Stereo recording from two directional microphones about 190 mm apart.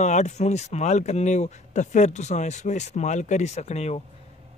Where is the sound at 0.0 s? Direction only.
35° left (ahead or behind).